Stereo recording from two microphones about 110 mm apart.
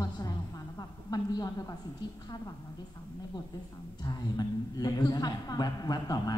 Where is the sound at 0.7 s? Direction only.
35° left (ahead or behind).